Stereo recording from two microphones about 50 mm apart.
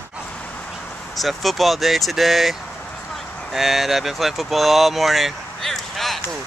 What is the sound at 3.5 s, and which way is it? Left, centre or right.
Speech, centre.